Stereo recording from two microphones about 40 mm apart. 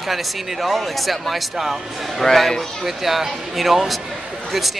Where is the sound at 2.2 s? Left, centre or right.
Centre.